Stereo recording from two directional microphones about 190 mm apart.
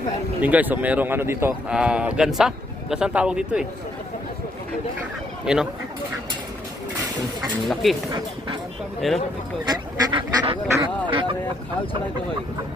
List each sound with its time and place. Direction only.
0.4 s speech: 10° right (ahead or behind)
5.4 s speech: 5° right (ahead or behind)
7.6 s speech: centre (ahead or behind)
9.7 s speech: 25° right (ahead or behind)